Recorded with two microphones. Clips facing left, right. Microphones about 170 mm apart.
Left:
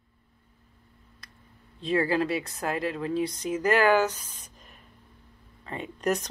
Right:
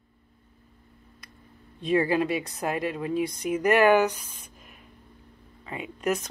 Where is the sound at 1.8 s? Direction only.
15° right (ahead or behind).